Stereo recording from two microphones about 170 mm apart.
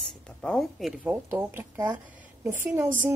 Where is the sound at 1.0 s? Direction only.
10° right (ahead or behind).